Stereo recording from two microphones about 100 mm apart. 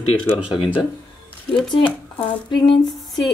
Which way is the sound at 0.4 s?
10° right (ahead or behind).